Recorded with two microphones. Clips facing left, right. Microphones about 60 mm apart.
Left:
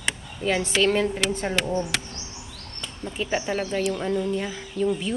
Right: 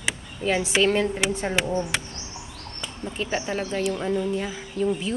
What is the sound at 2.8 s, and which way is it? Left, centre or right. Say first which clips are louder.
Bird: right 1 dB; centre.